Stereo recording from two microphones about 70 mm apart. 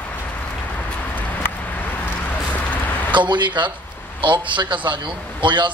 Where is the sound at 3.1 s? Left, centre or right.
Right.